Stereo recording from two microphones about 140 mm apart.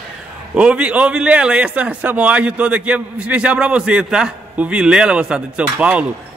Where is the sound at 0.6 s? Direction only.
10° right (ahead or behind).